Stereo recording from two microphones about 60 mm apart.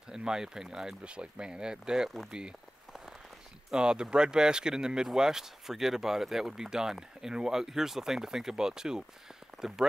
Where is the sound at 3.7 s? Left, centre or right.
Centre.